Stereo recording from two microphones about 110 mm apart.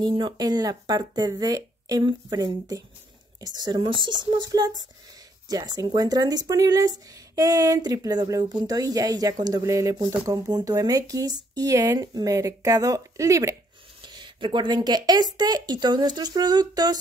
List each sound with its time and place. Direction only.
0.0 s speech: 45° right (ahead or behind); by 13.6 s 30° right (ahead or behind)
14.0 s speech: 45° right (ahead or behind)